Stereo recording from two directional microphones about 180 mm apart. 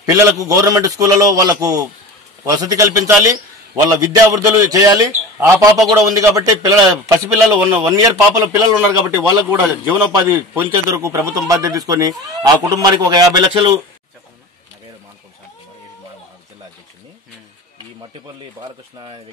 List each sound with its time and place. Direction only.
0.0 s a man's voice: 20° right (ahead or behind)
18.1 s speech: 25° right (ahead or behind)